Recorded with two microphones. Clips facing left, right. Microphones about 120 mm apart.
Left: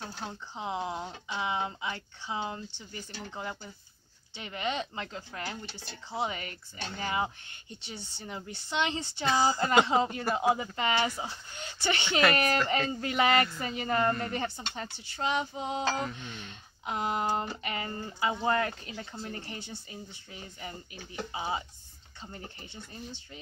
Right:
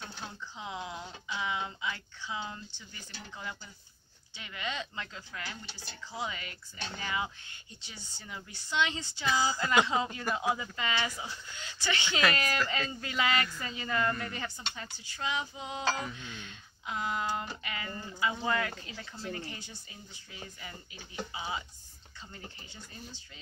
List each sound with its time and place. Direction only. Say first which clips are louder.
0.0 s speech: left 3 dB; 25° left (ahead or behind)
8.4 s speech: even; 25° left (ahead or behind)
14.6 s speech: left 4 dB; 40° left (ahead or behind)
15.3 s a sound: left 5 dB; 50° left (ahead or behind)
15.8 s speech: right 2 dB; 25° left (ahead or behind)
16.8 s a sound: left 3 dB; 50° left (ahead or behind)
17.4 s speech: left 5 dB; 35° left (ahead or behind)
21.3 s speech: left 5 dB; 35° left (ahead or behind)